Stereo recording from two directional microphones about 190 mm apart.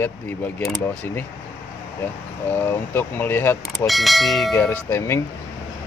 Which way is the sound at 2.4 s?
15° left (ahead or behind).